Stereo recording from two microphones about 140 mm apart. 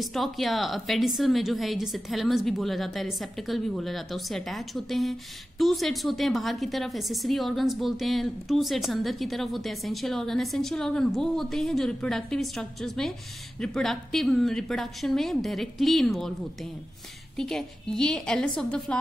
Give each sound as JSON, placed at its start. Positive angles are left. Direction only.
{"t": 0.0, "sound": "a woman's voice", "side_deg": 0}
{"t": 17.4, "sound": "a woman's voice", "side_deg": 5}